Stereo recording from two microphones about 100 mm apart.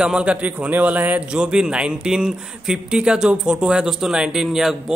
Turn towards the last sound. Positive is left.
turn(degrees=-5)  # may be behind; listen again after turning